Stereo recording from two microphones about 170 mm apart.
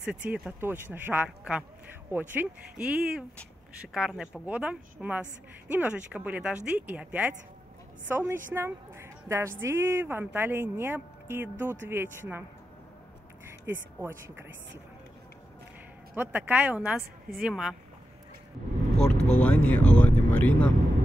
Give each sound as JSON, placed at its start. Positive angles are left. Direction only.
{"t": 0.0, "sound": "speech", "side_deg": -5}
{"t": 8.5, "sound": "a sound", "side_deg": -15}
{"t": 9.6, "sound": "speech", "side_deg": -15}
{"t": 13.5, "sound": "speech", "side_deg": -15}
{"t": 16.2, "sound": "speech", "side_deg": -10}
{"t": 19.3, "sound": "vehicle", "side_deg": 10}